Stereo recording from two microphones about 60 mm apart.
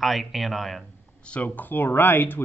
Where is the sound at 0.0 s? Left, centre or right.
Centre.